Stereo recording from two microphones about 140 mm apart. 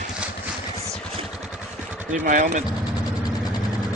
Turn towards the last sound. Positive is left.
turn(degrees=-70)  # may be behind; listen again after turning